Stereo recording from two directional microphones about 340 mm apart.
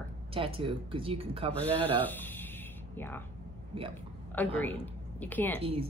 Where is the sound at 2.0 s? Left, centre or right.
Centre.